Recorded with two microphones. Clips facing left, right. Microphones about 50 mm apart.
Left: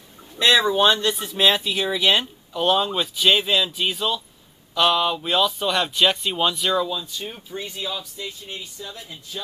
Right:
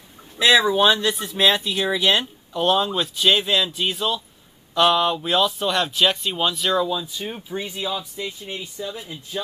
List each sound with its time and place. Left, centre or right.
0.4 s speech: centre